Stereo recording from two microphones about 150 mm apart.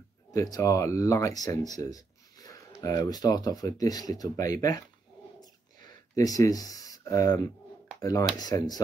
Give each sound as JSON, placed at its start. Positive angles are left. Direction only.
{"t": 0.3, "sound": "speech", "side_deg": 20}
{"t": 5.9, "sound": "speech", "side_deg": 25}